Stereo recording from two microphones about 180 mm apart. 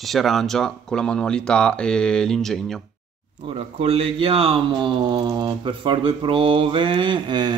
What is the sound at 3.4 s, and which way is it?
Speech, 30° right (ahead or behind).